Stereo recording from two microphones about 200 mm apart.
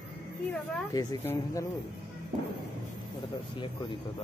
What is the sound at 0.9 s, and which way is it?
Speech, 20° left (ahead or behind).